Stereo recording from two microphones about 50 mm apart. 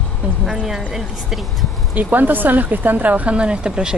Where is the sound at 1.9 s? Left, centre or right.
Right.